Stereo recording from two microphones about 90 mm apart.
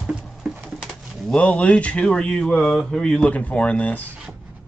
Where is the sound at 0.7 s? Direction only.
Centre (ahead or behind).